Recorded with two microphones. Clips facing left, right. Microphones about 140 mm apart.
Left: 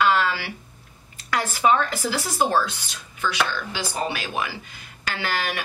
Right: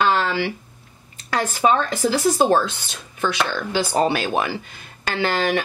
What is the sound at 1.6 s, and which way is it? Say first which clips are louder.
Speech: right 2 dB; 25° right (ahead or behind).